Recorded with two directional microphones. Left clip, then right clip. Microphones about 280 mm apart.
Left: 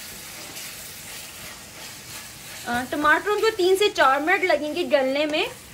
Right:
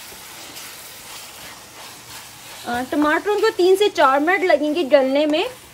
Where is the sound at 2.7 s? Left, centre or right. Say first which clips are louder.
Right 1 dB; right.